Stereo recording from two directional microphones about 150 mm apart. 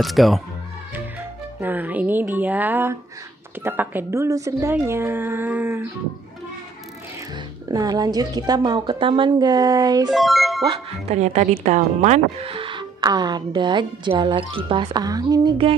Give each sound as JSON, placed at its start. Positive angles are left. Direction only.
{"t": 0.0, "sound": "speech", "side_deg": 0}
{"t": 1.6, "sound": "a woman's voice", "side_deg": -10}
{"t": 7.3, "sound": "speech", "side_deg": -25}
{"t": 10.0, "sound": "speech", "side_deg": 0}
{"t": 11.1, "sound": "speech", "side_deg": -50}